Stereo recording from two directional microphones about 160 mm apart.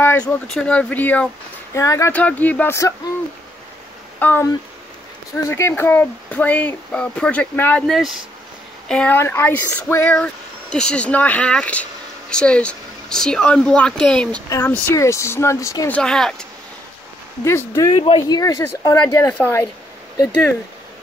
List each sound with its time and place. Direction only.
0.0 s speech: 10° left (ahead or behind)
4.2 s speech: 10° left (ahead or behind)
5.5 s speech: 15° left (ahead or behind)
7.8 s speech: centre (ahead or behind); by 15.9 s 20° left (ahead or behind)
15.9 s speech: 5° left (ahead or behind)
17.5 s speech: 15° left (ahead or behind)
18.0 s speech: 35° left (ahead or behind)
18.4 s speech: 20° left (ahead or behind)